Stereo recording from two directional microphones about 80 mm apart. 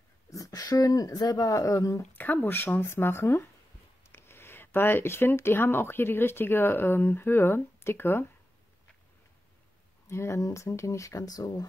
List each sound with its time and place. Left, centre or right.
0.3 s speech: left
2.1 s speech: left
10.0 s speech: left